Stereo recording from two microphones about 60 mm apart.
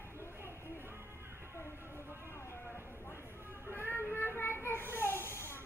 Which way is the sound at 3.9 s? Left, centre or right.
Left.